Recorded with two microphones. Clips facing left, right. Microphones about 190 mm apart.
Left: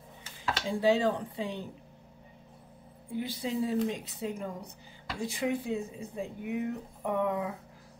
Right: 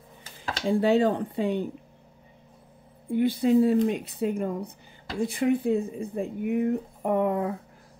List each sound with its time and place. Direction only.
0.7 s speech: 55° right (ahead or behind)
3.1 s speech: 55° right (ahead or behind)